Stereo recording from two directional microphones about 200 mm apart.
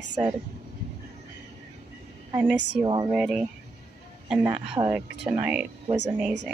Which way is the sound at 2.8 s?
25° right (ahead or behind).